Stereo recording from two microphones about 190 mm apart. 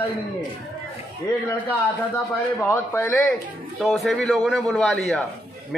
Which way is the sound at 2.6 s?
15° left (ahead or behind).